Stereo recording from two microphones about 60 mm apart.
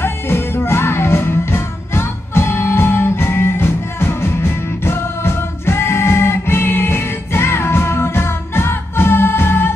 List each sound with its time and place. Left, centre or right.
0.0 s music: left